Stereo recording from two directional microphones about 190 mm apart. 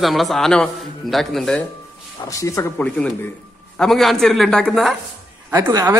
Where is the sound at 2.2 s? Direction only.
15° left (ahead or behind); by 5.0 s centre (ahead or behind).